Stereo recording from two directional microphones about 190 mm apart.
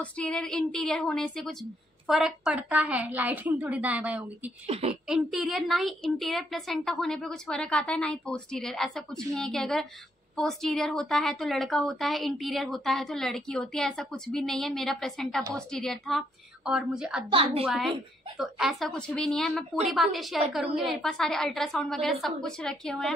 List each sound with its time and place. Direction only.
0.0 s a woman's voice: 5° left (ahead or behind)
4.6 s speech: 30° right (ahead or behind)
5.0 s a woman's voice: centre (ahead or behind)
17.3 s a woman's voice: 25° right (ahead or behind)
17.6 s a woman's voice: centre (ahead or behind)